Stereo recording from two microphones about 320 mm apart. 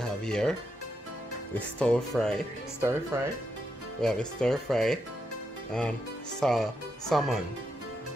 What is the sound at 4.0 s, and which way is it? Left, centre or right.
Speech, centre.